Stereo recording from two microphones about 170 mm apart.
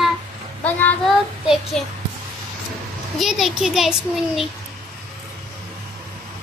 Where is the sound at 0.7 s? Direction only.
10° left (ahead or behind).